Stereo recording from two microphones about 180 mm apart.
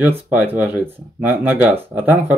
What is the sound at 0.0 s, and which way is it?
Speech, 10° right (ahead or behind).